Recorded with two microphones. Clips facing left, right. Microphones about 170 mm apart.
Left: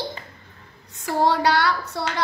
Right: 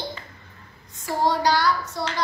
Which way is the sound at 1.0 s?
65° left (ahead or behind).